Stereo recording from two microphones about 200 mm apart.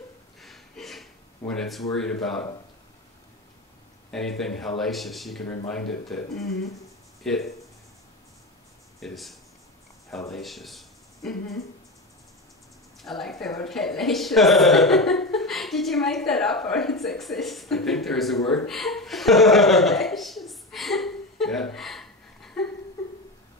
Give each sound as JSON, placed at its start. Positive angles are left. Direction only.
{"t": 0.4, "sound": "a sound", "side_deg": 0}
{"t": 1.6, "sound": "a woman's voice", "side_deg": 0}
{"t": 4.1, "sound": "a woman's voice", "side_deg": 0}
{"t": 9.0, "sound": "a woman's voice", "side_deg": 0}
{"t": 13.0, "sound": "a woman's voice", "side_deg": 0}
{"t": 18.7, "sound": "chuckle", "side_deg": 0}